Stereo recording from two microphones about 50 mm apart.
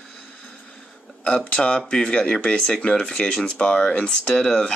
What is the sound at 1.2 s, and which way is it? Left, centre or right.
Speech, left.